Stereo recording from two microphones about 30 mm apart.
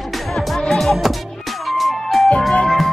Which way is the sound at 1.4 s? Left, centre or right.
Centre.